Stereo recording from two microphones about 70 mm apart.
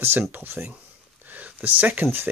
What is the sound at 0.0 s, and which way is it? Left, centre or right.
Speech, right.